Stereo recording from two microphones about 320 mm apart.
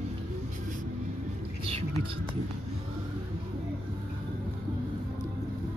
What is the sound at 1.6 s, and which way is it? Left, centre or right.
Speech, centre.